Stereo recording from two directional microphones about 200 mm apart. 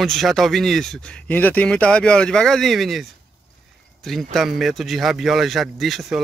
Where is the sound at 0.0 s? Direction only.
Centre (ahead or behind).